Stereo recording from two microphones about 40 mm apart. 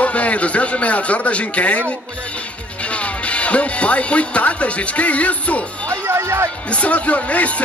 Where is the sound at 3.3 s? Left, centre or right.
Left.